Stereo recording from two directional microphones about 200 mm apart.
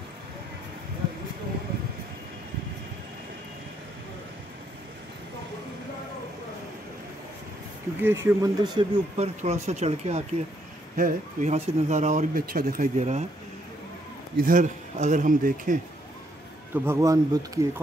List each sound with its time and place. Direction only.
8.0 s speech: 15° right (ahead or behind)
9.1 s speech: 30° right (ahead or behind)
14.3 s speech: 45° right (ahead or behind)
16.7 s speech: 10° right (ahead or behind)